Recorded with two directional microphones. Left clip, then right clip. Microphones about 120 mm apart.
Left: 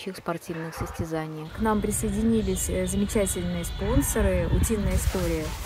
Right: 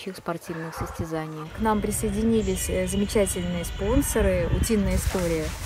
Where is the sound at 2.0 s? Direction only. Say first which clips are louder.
Right 4 dB; 15° left (ahead or behind).